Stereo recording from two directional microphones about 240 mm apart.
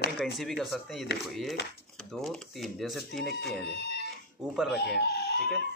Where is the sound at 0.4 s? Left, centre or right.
Centre.